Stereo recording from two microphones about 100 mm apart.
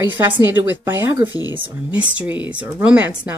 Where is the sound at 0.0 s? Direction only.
20° right (ahead or behind).